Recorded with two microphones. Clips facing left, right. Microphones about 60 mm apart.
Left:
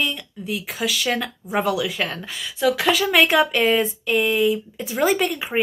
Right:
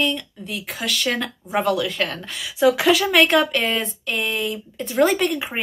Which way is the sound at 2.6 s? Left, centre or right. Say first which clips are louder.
Right 3 dB; centre.